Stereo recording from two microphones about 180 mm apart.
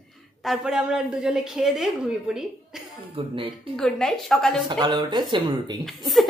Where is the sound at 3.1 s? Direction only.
30° right (ahead or behind).